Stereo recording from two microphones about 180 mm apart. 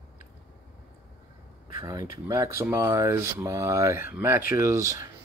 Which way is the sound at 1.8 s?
20° right (ahead or behind).